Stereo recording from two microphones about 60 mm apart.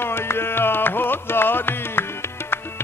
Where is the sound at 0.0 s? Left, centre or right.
Left.